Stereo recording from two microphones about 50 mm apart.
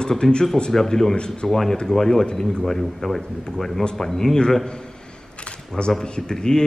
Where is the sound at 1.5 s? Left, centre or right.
Centre.